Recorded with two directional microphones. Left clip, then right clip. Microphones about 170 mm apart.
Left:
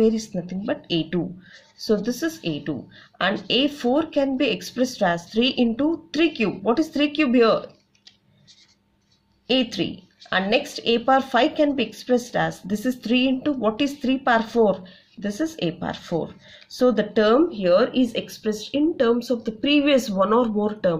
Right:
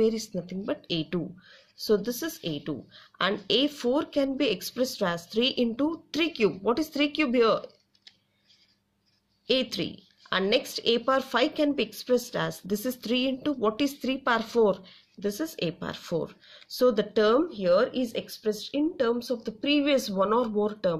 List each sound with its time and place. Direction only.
0.0 s speech: 40° right (ahead or behind)
9.5 s speech: 45° right (ahead or behind); by 21.0 s 25° right (ahead or behind)